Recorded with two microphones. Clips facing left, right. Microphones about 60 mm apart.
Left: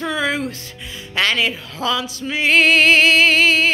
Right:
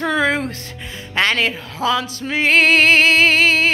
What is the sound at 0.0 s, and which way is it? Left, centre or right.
Music, right.